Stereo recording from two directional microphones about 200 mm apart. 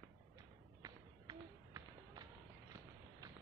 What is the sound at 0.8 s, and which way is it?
Run, 20° right (ahead or behind).